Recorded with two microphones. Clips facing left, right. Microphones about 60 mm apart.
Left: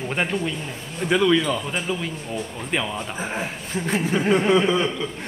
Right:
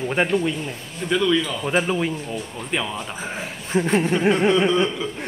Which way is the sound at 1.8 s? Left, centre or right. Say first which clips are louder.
Right 5 dB; right.